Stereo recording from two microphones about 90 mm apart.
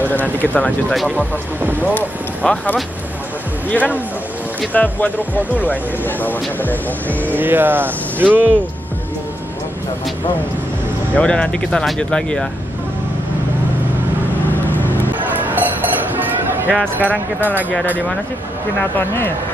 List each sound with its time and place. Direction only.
0.1 s speech: 20° left (ahead or behind)
7.3 s speech: 20° right (ahead or behind)
11.1 s speech: 10° left (ahead or behind)
16.1 s a sound: 20° right (ahead or behind)
17.0 s speech: 20° right (ahead or behind)
18.9 s speech: 25° left (ahead or behind)